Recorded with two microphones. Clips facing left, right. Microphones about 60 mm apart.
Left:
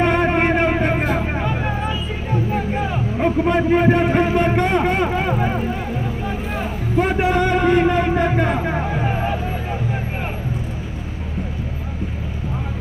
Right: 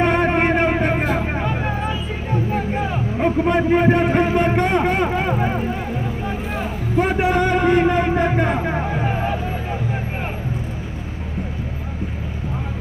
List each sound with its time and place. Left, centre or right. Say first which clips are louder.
0.0 s vehicle: even; centre
2.5 s music: even; centre
3.3 s a man's voice: even; centre
6.0 s vehicle: even; right
7.0 s a man's voice: even; centre
8.9 s vehicle: even; centre